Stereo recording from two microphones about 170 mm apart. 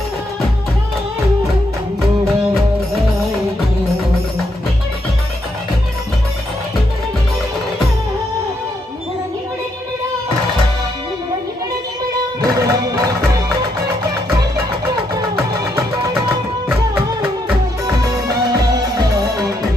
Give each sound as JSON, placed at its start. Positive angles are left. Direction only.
{"t": 12.4, "sound": "music", "side_deg": -20}